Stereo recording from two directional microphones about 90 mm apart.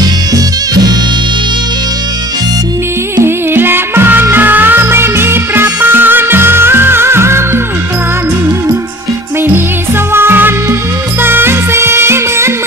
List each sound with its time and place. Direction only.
0.0 s music: 50° right (ahead or behind)
3.3 s music: 25° right (ahead or behind)
10.1 s music: 25° right (ahead or behind)